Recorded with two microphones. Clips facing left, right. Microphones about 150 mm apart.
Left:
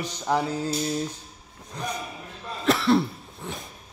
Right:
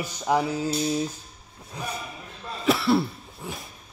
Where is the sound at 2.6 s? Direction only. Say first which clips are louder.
Left 1 dB; 5° right (ahead or behind).